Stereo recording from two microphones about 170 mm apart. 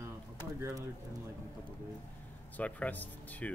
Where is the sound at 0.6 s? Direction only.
15° right (ahead or behind).